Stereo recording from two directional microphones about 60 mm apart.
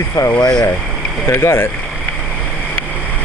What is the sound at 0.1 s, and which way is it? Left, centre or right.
Speech, left.